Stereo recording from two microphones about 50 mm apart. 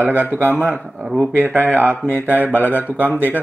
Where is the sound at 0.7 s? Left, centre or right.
Centre.